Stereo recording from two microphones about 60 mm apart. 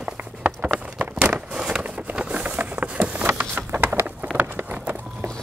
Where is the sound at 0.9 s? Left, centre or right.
Right.